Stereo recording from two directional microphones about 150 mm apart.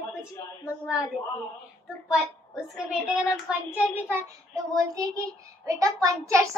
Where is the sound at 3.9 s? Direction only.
15° right (ahead or behind).